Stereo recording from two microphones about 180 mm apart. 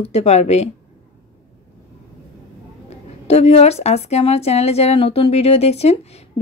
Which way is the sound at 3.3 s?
35° left (ahead or behind).